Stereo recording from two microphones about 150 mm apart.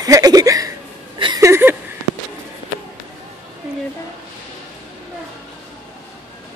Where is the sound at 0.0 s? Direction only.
25° right (ahead or behind).